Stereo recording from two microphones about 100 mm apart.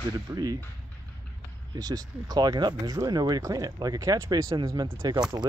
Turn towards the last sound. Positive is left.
turn(degrees=-45)  # may be behind; listen again after turning